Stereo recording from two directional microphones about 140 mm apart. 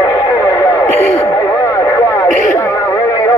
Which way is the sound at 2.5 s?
20° left (ahead or behind).